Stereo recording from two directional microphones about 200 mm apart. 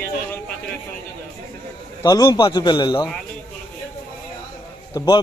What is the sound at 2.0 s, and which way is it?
A man's voice, 20° left (ahead or behind).